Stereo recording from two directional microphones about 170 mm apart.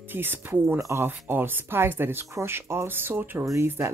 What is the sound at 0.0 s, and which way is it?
Speech, 10° right (ahead or behind).